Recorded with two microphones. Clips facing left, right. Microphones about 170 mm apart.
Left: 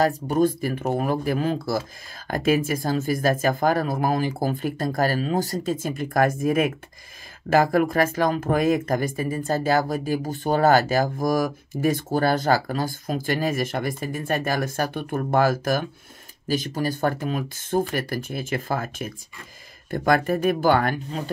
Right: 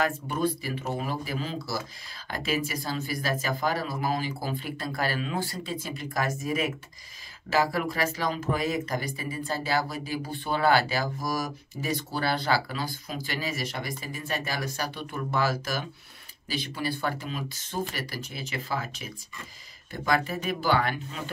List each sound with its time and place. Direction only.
0.0 s speech: 40° left (ahead or behind)